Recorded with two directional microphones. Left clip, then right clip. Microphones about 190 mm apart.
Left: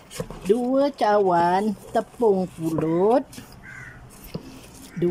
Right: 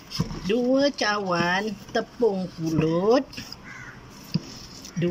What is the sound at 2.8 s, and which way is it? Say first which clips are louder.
Speech: left 2 dB; 30° left (ahead or behind).